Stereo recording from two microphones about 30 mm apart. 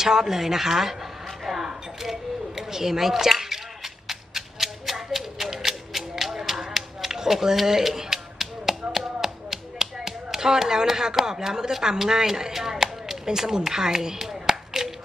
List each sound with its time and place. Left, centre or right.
0.0 s speech: centre
1.4 s a sound: centre
11.7 s speech: centre